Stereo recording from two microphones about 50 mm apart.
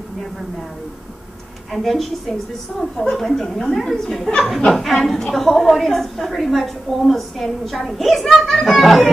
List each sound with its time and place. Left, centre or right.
1.7 s a woman's voice: centre